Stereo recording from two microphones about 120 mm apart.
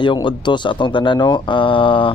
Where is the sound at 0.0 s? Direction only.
40° left (ahead or behind).